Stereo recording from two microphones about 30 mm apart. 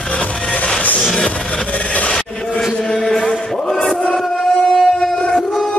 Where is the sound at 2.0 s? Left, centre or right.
Left.